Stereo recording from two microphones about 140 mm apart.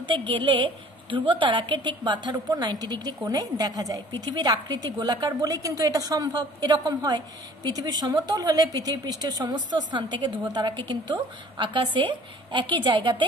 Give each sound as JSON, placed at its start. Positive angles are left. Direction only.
{"t": 0.0, "sound": "a woman's voice", "side_deg": -35}